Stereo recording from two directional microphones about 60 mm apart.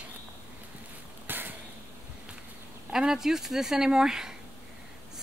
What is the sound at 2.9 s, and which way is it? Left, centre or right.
Speech, centre.